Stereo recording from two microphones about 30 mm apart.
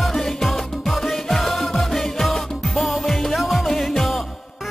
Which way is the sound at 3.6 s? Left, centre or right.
Centre.